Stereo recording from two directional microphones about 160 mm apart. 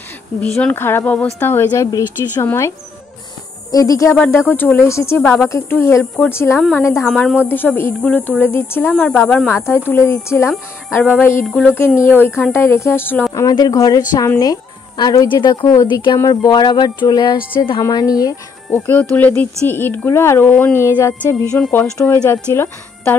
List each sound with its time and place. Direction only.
0.6 s a woman's voice: 10° left (ahead or behind)
3.7 s a woman's voice: 20° left (ahead or behind)
7.1 s a woman's voice: 5° left (ahead or behind)
7.4 s a woman's voice: 15° left (ahead or behind)
18.7 s a woman's voice: 10° left (ahead or behind)
21.9 s a woman's voice: 20° left (ahead or behind)